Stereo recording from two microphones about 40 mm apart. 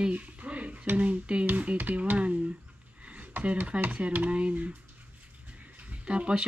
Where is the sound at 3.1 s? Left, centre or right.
Right.